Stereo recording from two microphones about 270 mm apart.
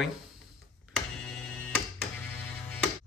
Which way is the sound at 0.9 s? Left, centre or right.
Centre.